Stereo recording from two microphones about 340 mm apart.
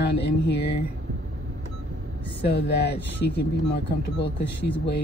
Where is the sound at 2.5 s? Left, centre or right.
Left.